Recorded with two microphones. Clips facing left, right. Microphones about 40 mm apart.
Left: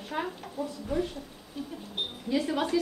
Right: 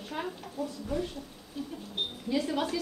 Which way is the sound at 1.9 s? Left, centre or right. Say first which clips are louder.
Left 1 dB; centre.